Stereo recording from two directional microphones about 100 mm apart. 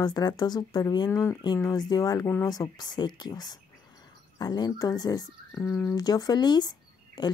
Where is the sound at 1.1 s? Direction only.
30° left (ahead or behind).